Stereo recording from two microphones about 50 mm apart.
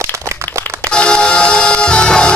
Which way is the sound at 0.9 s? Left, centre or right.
Centre.